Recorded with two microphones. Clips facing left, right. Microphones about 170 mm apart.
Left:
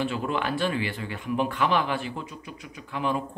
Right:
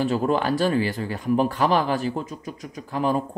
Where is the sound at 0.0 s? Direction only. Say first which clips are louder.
Right 6 dB; 40° right (ahead or behind).